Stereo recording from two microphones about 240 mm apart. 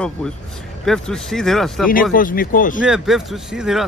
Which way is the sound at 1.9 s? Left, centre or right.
Left.